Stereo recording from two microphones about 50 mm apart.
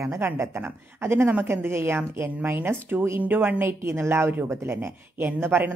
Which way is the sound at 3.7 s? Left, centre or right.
Right.